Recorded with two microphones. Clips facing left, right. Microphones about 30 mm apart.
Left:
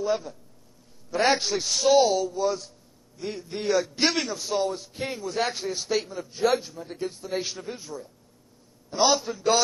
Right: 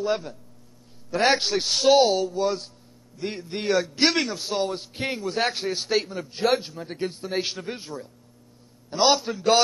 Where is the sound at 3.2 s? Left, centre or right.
Right.